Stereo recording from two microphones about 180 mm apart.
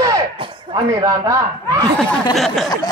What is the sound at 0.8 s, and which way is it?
A man's voice, 20° right (ahead or behind).